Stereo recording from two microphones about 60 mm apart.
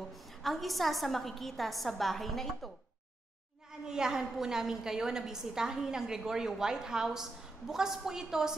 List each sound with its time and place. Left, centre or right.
0.4 s a woman's voice: centre
3.8 s a woman's voice: centre